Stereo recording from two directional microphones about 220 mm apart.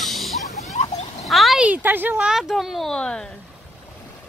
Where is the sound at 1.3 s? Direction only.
Centre (ahead or behind).